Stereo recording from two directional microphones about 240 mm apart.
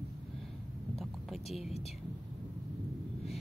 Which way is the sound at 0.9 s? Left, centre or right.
Centre.